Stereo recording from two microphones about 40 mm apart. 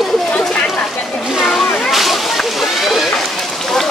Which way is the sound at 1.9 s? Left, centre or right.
Centre.